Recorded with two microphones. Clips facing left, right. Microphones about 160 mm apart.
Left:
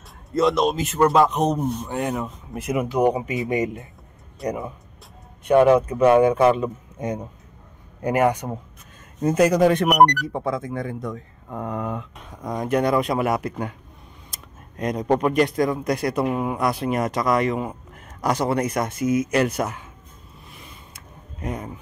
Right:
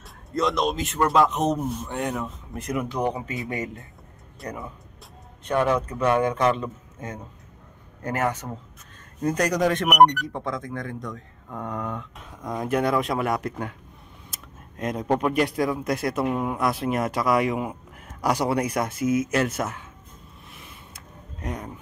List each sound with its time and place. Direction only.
0.3 s speech: centre (ahead or behind); by 4.7 s 25° left (ahead or behind)
5.4 s speech: 10° left (ahead or behind)
21.4 s speech: 5° left (ahead or behind)